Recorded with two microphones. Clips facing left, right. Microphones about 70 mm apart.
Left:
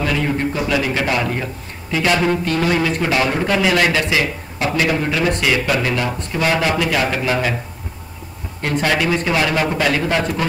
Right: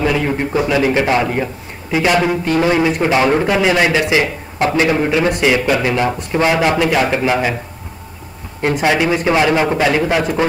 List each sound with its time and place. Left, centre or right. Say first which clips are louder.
0.0 s a man's voice: right 3 dB; centre
8.7 s a man's voice: right 2 dB; centre